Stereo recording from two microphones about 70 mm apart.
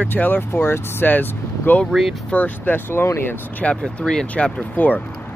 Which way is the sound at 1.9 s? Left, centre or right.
Centre.